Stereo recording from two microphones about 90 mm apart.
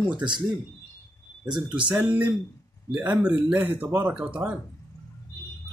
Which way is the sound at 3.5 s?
20° right (ahead or behind).